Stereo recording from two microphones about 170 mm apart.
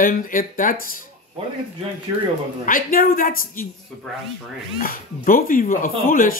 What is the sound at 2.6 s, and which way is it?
Speech, 55° left (ahead or behind).